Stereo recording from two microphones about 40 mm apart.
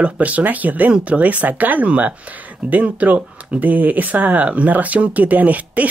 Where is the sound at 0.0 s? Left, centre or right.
Right.